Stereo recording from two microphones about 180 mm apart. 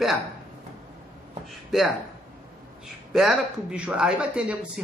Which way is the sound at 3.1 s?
Centre (ahead or behind).